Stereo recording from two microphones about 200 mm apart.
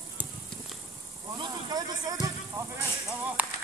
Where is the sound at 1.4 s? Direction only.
20° right (ahead or behind).